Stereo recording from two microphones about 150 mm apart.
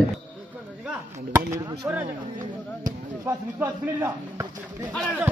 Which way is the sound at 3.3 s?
15° right (ahead or behind).